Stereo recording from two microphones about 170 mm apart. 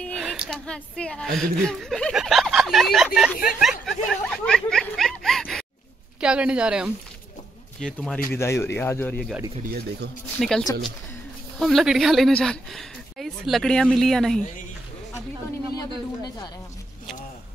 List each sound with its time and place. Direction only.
0.0 s a sound: centre (ahead or behind)
0.5 s speech: 5° left (ahead or behind)
3.8 s a sound: 5° left (ahead or behind)
6.2 s speech: 5° right (ahead or behind)
8.3 s a man's voice: 15° left (ahead or behind)
9.6 s speech: 60° right (ahead or behind)
10.4 s speech: centre (ahead or behind)